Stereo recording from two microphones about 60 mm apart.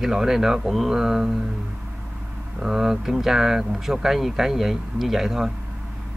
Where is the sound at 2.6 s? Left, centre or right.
Centre.